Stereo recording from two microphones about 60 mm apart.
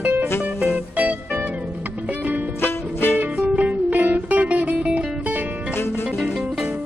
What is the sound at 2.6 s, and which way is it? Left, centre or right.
Music, left.